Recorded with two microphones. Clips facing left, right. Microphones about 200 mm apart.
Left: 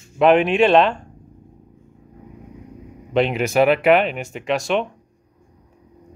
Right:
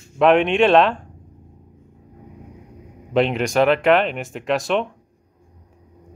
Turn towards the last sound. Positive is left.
turn(degrees=0)  # may be behind; listen again after turning